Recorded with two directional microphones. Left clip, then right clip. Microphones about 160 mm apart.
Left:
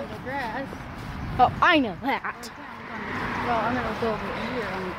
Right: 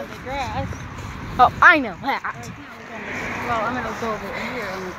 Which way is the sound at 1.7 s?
20° left (ahead or behind).